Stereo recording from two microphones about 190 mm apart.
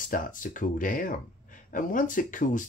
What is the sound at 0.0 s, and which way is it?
Speech, 45° left (ahead or behind).